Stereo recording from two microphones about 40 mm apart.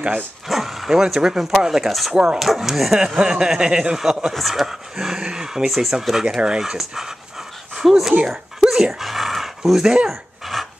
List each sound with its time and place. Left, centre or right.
0.5 s speech: centre
1.1 s speech: centre
1.9 s speech: centre
3.2 s speech: right
4.3 s speech: centre
5.7 s speech: centre
8.3 s a sound: centre
10.0 s pant: centre